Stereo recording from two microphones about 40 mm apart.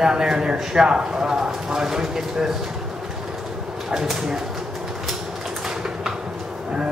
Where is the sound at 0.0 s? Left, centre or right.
Centre.